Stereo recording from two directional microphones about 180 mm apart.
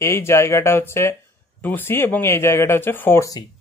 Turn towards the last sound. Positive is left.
turn(degrees=15)  # may be behind; listen again after turning